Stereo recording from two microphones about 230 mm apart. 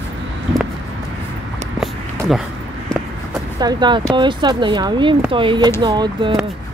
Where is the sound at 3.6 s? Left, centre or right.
Centre.